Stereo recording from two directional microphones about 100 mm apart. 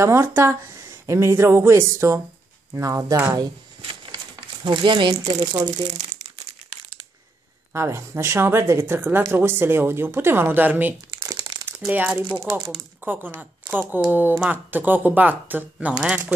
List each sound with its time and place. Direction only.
0.0 s speech: 25° right (ahead or behind)
3.8 s a sound: 55° right (ahead or behind)
4.6 s speech: 55° right (ahead or behind)
6.2 s crumpling: 75° right (ahead or behind)
7.7 s speech: 25° right (ahead or behind)
11.3 s crumpling: 45° right (ahead or behind)
11.8 s speech: 10° right (ahead or behind)